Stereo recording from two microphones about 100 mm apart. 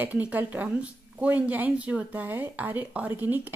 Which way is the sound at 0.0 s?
15° right (ahead or behind).